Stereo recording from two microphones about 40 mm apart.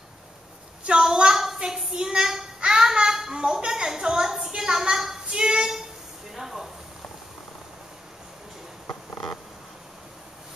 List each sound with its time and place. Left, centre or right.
0.8 s a child's voice: centre
1.6 s child singing: centre
2.0 s a child's voice: centre
4.6 s a sound: centre